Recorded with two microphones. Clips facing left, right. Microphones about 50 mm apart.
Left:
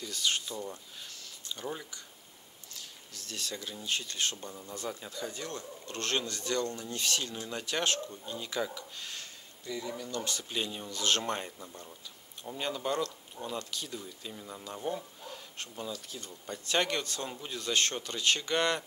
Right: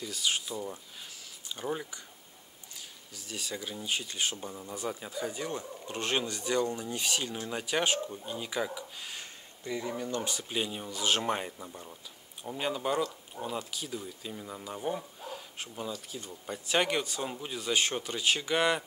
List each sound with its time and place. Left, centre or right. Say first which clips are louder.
0.0 s speech: even; centre
9.7 s speech: right 4 dB; right
10.3 s speech: right 2 dB; centre